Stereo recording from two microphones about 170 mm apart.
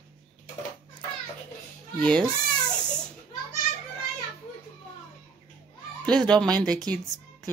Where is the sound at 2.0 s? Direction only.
5° left (ahead or behind).